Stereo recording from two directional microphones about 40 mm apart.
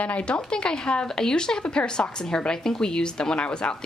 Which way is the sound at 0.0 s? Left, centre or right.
Left.